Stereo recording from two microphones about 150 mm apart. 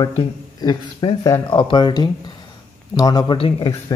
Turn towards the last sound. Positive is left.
turn(degrees=40)  # may be behind; listen again after turning